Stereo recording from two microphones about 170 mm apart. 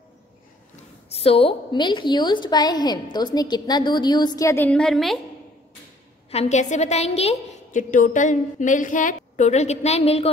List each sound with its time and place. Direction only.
1.1 s a woman's voice: 35° left (ahead or behind); by 5.2 s centre (ahead or behind)
6.3 s a woman's voice: 40° left (ahead or behind)
7.9 s a woman's voice: 50° left (ahead or behind)